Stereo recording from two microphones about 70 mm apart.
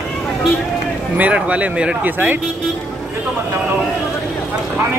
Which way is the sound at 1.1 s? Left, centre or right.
Centre.